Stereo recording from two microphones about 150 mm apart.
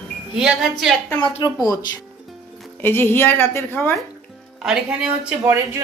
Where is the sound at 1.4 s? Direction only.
25° left (ahead or behind).